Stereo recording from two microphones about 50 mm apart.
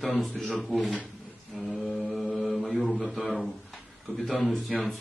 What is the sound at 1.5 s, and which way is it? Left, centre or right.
Mantra, centre.